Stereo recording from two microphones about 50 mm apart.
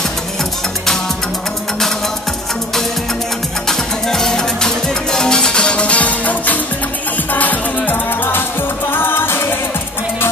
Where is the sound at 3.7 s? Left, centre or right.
Centre; by 9.2 s left.